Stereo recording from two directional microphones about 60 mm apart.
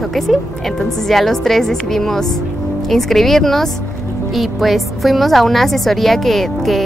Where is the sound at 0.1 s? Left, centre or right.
Centre.